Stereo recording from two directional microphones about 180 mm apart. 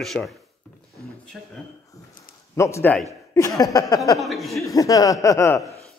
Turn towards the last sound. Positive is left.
turn(degrees=15)  # may be behind; listen again after turning